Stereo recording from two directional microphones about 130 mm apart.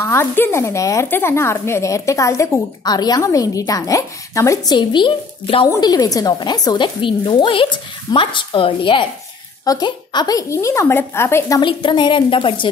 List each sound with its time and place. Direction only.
0.0 s speech: 20° left (ahead or behind)
4.7 s speech: 40° left (ahead or behind)
5.8 s speech: 30° left (ahead or behind)
11.6 s speech: 35° left (ahead or behind)